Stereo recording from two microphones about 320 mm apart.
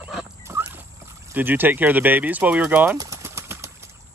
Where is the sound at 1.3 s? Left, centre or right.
Centre.